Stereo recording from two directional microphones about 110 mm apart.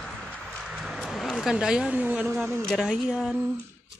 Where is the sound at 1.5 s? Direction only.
10° right (ahead or behind).